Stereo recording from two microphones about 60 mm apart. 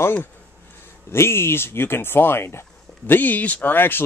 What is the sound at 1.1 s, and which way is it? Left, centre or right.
Speech, left.